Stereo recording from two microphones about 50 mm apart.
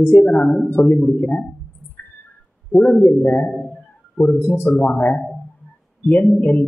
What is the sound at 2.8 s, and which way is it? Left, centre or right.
Speech, left.